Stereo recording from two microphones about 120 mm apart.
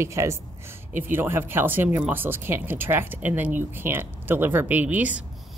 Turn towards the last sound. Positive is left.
turn(degrees=-10)  # may be behind; listen again after turning